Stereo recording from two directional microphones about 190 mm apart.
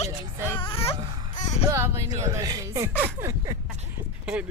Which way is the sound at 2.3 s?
15° right (ahead or behind).